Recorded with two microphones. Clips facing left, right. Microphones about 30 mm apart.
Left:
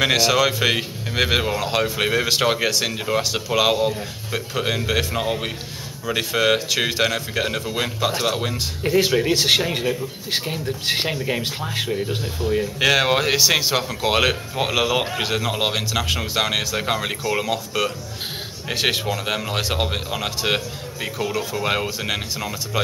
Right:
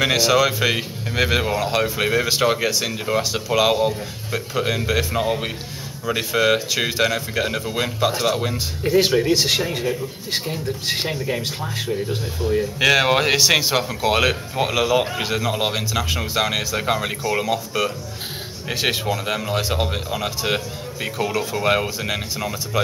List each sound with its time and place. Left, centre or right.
0.0 s speech: centre
9.3 s speech: left
12.7 s speech: centre
21.0 s speech: centre